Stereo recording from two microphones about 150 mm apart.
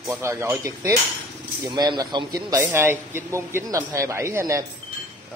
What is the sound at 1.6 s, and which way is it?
Speech, 30° right (ahead or behind).